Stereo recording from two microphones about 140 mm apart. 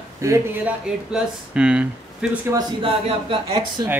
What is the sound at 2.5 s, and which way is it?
Speech, 30° right (ahead or behind).